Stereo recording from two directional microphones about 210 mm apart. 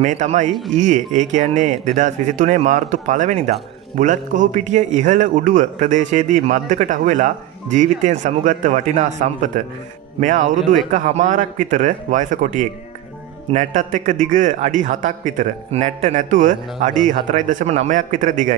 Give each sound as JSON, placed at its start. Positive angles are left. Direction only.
{"t": 0.0, "sound": "a man's voice", "side_deg": -35}
{"t": 0.5, "sound": "speech", "side_deg": 0}
{"t": 0.7, "sound": "a man's voice", "side_deg": -35}
{"t": 10.9, "sound": "a man's voice", "side_deg": -35}